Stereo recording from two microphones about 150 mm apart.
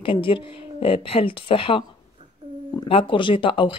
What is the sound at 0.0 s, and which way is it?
Speech, 35° left (ahead or behind).